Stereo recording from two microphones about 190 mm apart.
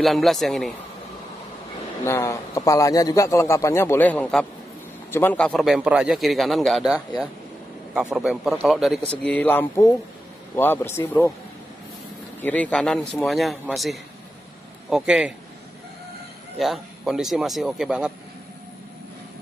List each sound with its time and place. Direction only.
0.0 s a man's voice: centre (ahead or behind)
2.0 s a man's voice: 15° left (ahead or behind)
7.9 s a man's voice: 5° right (ahead or behind); by 11.3 s 10° left (ahead or behind)
12.4 s a man's voice: 10° left (ahead or behind)
16.5 s a man's voice: centre (ahead or behind)